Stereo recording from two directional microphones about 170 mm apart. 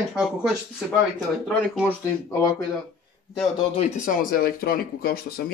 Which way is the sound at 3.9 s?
50° left (ahead or behind).